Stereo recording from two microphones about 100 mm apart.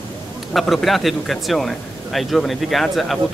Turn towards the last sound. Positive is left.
turn(degrees=0)  # may be behind; listen again after turning